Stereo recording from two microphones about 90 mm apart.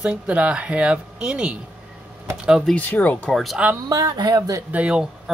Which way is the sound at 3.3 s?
Centre (ahead or behind).